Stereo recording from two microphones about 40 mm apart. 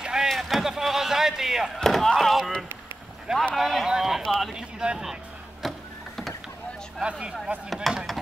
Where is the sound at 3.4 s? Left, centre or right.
Centre.